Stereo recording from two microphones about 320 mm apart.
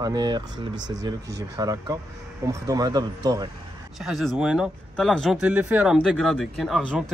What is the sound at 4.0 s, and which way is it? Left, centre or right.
Speech, centre.